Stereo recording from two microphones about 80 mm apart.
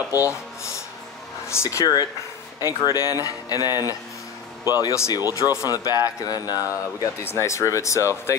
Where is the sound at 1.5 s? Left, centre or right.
Left.